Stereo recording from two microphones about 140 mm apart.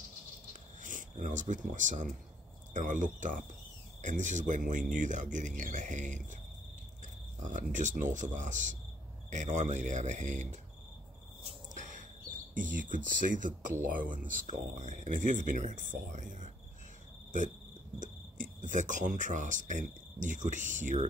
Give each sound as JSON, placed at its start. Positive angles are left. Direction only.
{"t": 0.5, "sound": "a sound", "side_deg": -65}
{"t": 2.7, "sound": "speech", "side_deg": -65}
{"t": 7.4, "sound": "speech", "side_deg": -65}
{"t": 12.5, "sound": "speech", "side_deg": -70}
{"t": 17.9, "sound": "speech", "side_deg": -65}